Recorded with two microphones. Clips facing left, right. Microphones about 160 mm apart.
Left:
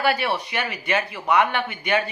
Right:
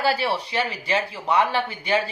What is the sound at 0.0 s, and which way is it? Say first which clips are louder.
Speech: even; 30° right (ahead or behind).